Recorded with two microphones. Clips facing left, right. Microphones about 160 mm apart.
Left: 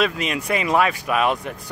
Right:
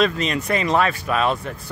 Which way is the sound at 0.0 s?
10° left (ahead or behind).